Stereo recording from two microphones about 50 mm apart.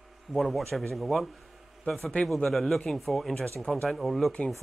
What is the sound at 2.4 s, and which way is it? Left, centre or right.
A man's voice, centre.